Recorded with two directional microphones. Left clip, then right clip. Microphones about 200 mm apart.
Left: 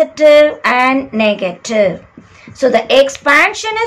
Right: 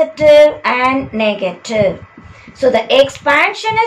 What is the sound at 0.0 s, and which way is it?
A woman's voice, 25° left (ahead or behind).